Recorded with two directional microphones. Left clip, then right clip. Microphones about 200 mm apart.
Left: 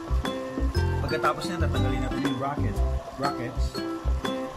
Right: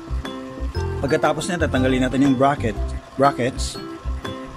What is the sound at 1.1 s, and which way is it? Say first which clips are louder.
Speech: right 7 dB; 35° right (ahead or behind).